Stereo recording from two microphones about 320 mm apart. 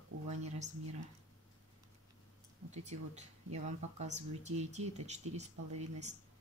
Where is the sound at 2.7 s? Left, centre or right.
Right.